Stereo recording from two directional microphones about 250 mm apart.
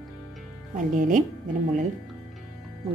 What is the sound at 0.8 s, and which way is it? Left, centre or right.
Speech, right.